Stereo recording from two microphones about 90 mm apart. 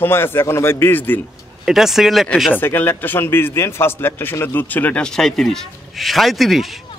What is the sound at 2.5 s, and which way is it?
A man's voice, 20° left (ahead or behind).